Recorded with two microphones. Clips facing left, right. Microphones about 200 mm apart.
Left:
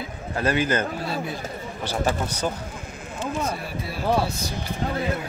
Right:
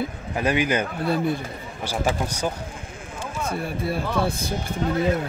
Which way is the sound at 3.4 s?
55° right (ahead or behind).